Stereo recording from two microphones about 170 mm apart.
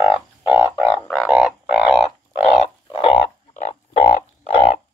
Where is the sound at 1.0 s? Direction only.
10° left (ahead or behind).